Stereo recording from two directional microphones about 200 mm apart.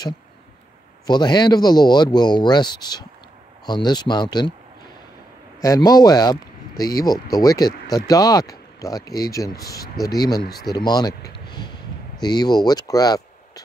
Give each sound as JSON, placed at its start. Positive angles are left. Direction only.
{"t": 1.0, "sound": "speech", "side_deg": 20}
{"t": 5.6, "sound": "speech", "side_deg": 15}